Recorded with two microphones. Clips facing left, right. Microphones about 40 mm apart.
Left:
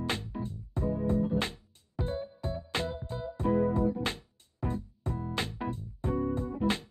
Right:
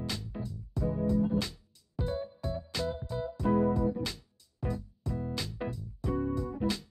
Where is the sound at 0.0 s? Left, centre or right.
Left.